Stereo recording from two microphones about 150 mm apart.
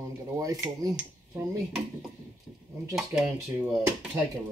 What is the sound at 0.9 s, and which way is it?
Speech, 5° right (ahead or behind).